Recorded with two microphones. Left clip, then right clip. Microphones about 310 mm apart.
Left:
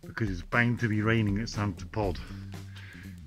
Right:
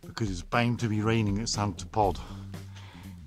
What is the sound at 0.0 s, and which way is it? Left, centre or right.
Speech, centre.